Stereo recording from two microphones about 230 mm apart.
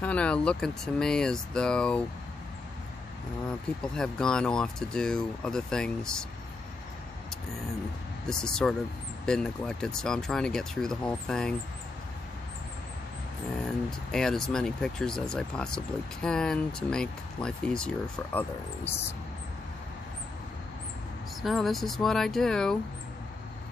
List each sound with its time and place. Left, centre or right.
0.0 s speech: centre
3.4 s speech: centre
8.3 s speech: centre
13.7 s speech: centre
21.4 s speech: centre